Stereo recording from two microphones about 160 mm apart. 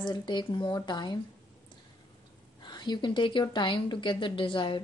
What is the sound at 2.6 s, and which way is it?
Speech, 25° left (ahead or behind).